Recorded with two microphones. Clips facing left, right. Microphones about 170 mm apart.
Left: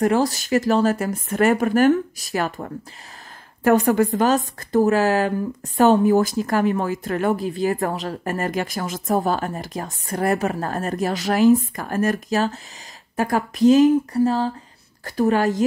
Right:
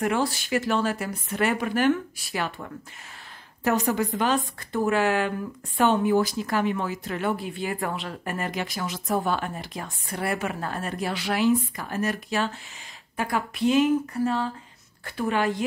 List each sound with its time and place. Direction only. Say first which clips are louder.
0.0 s speech: left 6 dB; 40° left (ahead or behind)